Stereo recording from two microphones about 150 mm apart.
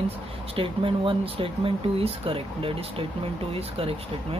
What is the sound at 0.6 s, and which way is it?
Speech, 35° right (ahead or behind).